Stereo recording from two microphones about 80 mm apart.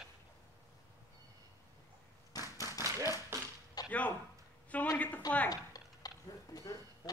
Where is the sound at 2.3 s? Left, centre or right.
Left.